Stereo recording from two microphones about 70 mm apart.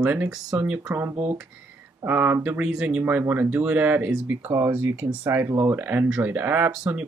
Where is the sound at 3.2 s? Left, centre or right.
Right.